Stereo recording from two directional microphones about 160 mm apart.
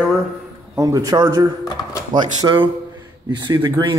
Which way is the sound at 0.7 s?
20° right (ahead or behind).